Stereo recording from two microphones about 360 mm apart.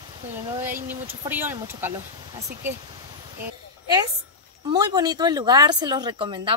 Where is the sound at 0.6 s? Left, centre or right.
Centre.